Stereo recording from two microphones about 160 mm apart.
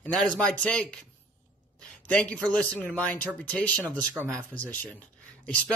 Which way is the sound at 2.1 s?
5° left (ahead or behind).